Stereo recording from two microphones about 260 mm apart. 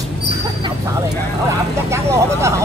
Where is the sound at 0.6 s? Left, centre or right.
Centre.